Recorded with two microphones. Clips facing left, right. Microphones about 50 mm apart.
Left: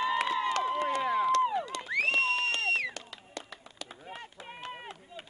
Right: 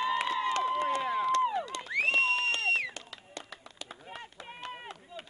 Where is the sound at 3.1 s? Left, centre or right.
Centre.